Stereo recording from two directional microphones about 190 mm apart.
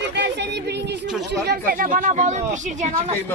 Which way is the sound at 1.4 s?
50° right (ahead or behind).